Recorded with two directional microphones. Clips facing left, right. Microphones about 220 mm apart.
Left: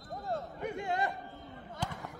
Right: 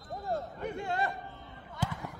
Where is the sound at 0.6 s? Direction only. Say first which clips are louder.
Left 2 dB; 15° left (ahead or behind).